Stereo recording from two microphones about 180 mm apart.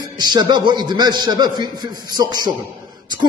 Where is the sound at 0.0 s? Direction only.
25° right (ahead or behind).